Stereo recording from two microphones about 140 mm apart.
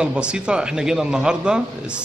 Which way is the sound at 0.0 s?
5° right (ahead or behind).